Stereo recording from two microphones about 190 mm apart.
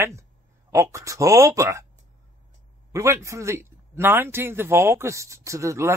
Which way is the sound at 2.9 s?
15° right (ahead or behind).